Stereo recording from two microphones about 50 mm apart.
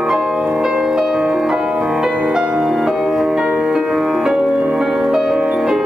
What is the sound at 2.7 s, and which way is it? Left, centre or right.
Music, centre.